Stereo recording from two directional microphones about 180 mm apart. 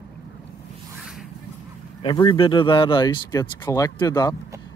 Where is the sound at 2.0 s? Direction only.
25° left (ahead or behind).